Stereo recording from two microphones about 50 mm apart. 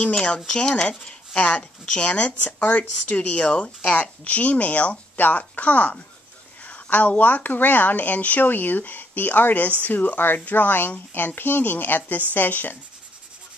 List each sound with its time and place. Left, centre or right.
0.0 s a woman's voice: centre; by 12.7 s left